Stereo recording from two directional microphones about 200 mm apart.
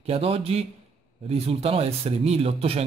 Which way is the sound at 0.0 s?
30° right (ahead or behind).